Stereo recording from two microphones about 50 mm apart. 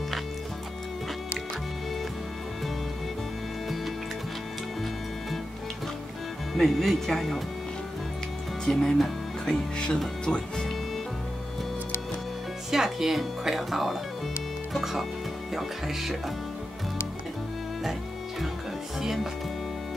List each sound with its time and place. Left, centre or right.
6.5 s speech: centre
8.6 s speech: centre
10.2 s speech: centre
12.7 s speech: centre